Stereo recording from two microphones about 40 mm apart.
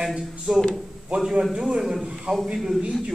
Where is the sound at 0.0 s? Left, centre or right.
Centre.